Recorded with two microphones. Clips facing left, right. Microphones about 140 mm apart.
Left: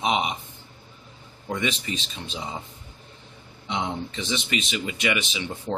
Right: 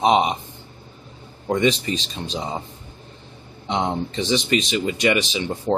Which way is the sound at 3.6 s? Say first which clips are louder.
Right 6 dB; 35° right (ahead or behind).